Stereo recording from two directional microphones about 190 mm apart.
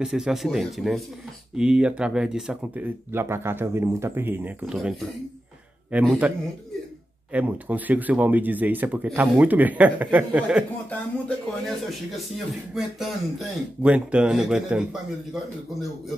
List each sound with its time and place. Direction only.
0.0 s speech: 5° right (ahead or behind)
7.3 s speech: 10° right (ahead or behind)
10.9 s speech: 5° left (ahead or behind)
12.7 s speech: centre (ahead or behind)